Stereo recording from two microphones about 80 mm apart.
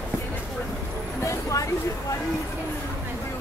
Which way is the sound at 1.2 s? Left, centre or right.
Left.